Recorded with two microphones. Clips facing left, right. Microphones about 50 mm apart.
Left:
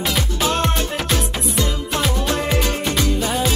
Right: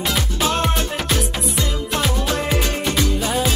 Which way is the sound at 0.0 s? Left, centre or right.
Centre.